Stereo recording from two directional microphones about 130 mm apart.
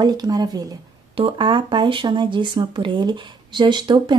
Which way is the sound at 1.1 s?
40° right (ahead or behind).